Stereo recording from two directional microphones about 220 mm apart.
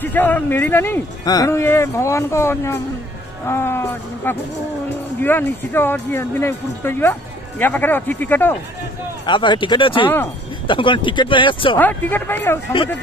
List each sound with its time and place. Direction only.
0.0 s speech: 10° left (ahead or behind)
9.2 s speech: 20° left (ahead or behind)
11.7 s speech: 10° left (ahead or behind)